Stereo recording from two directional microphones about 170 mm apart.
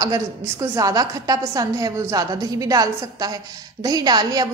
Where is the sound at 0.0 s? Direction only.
20° right (ahead or behind).